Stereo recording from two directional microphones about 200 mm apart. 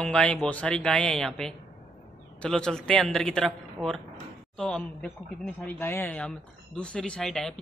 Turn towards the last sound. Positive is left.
turn(degrees=0)  # may be behind; listen again after turning